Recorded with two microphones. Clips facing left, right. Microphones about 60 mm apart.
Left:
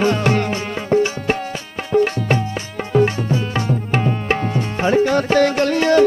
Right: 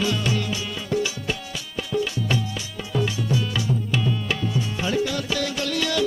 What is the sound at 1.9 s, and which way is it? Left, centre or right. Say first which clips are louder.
Tabla: left 9 dB; left.